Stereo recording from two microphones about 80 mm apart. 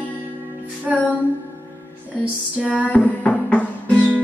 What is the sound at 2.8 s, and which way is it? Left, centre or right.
Music, centre.